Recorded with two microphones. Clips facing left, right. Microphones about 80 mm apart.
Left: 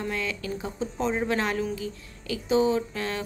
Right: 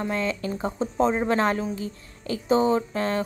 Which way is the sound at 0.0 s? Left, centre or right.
Right.